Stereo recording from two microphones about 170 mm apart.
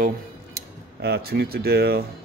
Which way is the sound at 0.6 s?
70° right (ahead or behind).